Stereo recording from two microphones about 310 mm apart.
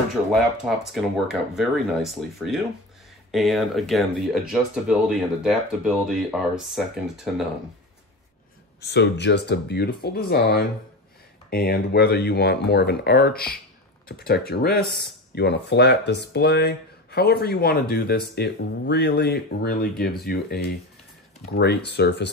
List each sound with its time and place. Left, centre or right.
0.9 s speech: centre
8.8 s speech: left